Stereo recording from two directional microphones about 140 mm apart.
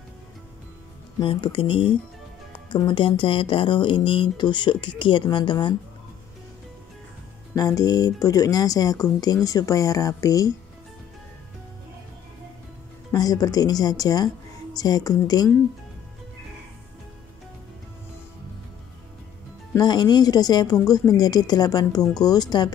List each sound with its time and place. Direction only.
1.2 s speech: 35° left (ahead or behind)
7.5 s speech: 25° left (ahead or behind)
13.1 s speech: 25° left (ahead or behind)
19.8 s speech: 30° left (ahead or behind)